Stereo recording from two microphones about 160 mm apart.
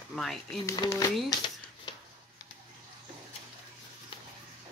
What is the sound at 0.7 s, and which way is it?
Speech, 20° left (ahead or behind).